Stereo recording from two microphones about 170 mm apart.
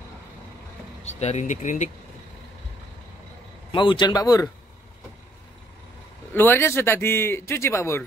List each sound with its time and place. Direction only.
1.0 s speech: 40° left (ahead or behind)
3.7 s a man's voice: 30° left (ahead or behind)
6.3 s speech: 15° left (ahead or behind)